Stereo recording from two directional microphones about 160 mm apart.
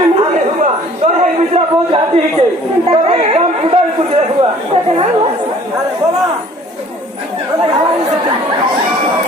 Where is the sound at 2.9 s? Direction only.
40° right (ahead or behind).